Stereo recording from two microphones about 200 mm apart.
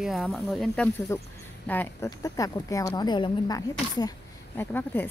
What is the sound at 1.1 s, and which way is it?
Speech, 15° left (ahead or behind).